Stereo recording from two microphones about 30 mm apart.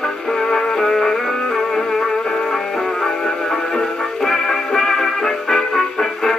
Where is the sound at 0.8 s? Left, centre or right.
Centre.